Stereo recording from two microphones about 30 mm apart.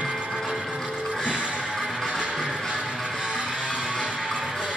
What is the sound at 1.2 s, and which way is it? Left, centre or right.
Music, right.